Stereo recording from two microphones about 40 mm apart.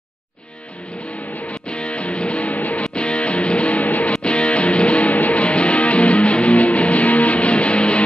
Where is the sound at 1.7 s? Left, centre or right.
Left.